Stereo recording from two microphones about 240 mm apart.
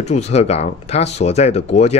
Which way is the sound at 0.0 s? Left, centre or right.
Left.